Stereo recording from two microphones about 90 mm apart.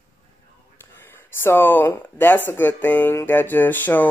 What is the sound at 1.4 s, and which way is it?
Speech, 25° left (ahead or behind).